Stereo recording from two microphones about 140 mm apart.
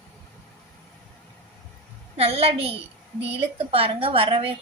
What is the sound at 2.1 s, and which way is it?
A woman's voice, 45° right (ahead or behind).